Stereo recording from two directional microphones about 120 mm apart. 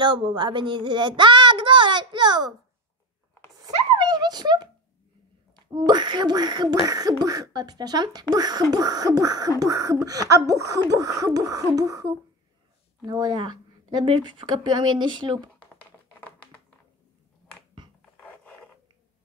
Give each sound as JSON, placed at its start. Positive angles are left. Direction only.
{"t": 0.0, "sound": "a child's voice", "side_deg": -40}
{"t": 3.6, "sound": "a sound", "side_deg": -35}
{"t": 5.7, "sound": "speech", "side_deg": -35}
{"t": 9.6, "sound": "a sound", "side_deg": -30}
{"t": 13.0, "sound": "speech", "side_deg": -35}
{"t": 15.8, "sound": "typing", "side_deg": 10}
{"t": 18.2, "sound": "mechanisms", "side_deg": 15}